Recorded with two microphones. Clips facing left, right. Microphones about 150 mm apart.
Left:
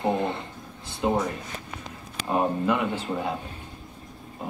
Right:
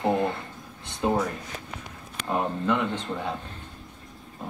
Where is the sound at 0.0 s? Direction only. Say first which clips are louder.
Right 1 dB; 20° left (ahead or behind).